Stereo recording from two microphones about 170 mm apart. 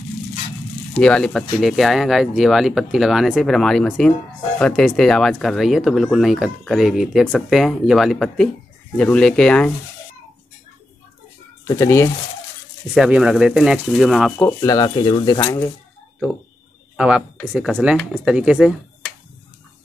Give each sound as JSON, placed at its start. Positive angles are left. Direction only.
{"t": 0.9, "sound": "speech", "side_deg": 5}
{"t": 11.6, "sound": "speech", "side_deg": 20}
{"t": 12.9, "sound": "speech", "side_deg": -5}
{"t": 14.4, "sound": "speech", "side_deg": 20}
{"t": 16.9, "sound": "speech", "side_deg": -5}